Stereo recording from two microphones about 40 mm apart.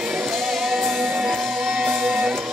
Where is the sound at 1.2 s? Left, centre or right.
Right.